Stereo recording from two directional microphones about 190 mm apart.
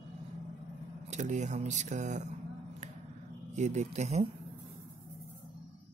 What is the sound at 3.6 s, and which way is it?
Speech, 40° right (ahead or behind).